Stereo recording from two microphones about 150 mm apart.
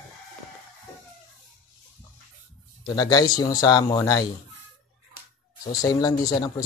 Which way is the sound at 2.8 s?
25° left (ahead or behind).